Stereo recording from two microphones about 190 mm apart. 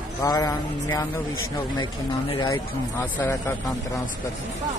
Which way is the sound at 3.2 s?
10° left (ahead or behind).